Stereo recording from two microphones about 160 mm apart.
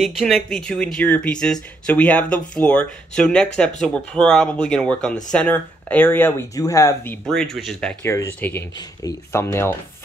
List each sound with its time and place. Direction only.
0.0 s speech: centre (ahead or behind); by 7.2 s 20° left (ahead or behind)
7.5 s speech: centre (ahead or behind)